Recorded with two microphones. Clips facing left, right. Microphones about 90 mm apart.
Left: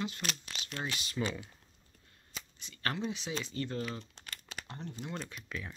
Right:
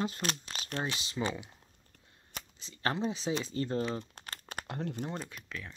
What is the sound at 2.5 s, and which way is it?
Speech, 30° right (ahead or behind).